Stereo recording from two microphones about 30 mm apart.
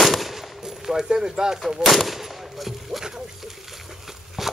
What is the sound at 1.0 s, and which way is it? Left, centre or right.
Speech, right.